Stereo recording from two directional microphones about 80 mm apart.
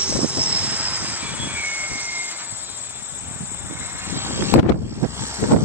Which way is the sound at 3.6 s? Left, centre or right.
Right.